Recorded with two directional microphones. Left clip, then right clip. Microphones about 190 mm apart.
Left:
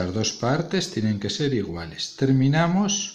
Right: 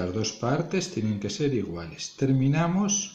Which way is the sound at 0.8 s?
55° left (ahead or behind).